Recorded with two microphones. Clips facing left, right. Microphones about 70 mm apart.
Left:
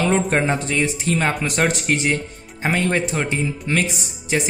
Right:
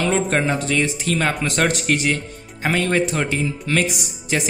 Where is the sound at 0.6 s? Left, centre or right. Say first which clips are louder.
Even; centre.